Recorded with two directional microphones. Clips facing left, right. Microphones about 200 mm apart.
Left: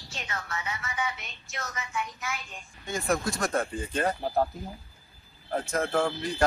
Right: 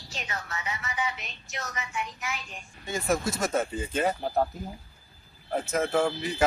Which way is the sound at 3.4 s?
5° right (ahead or behind).